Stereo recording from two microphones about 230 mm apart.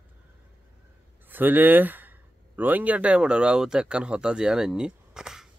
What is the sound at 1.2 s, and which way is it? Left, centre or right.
Speech, centre.